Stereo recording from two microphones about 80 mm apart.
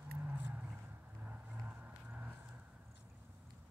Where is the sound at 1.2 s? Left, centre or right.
Centre.